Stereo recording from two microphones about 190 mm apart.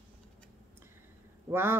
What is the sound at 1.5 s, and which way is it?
Speech, 10° right (ahead or behind).